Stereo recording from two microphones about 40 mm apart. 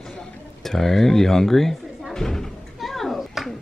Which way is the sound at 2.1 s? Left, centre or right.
Centre.